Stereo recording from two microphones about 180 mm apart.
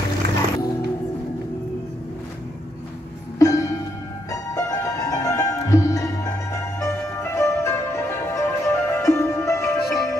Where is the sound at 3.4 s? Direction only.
20° left (ahead or behind).